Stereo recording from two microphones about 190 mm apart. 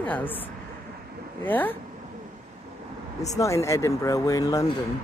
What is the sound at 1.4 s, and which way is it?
Speech, 10° left (ahead or behind).